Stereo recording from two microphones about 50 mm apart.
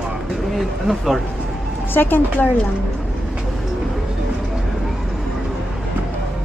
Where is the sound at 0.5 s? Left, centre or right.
Centre.